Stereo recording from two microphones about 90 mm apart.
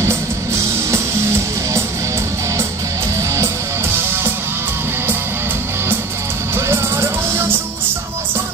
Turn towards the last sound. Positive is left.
turn(degrees=-25)  # may be behind; listen again after turning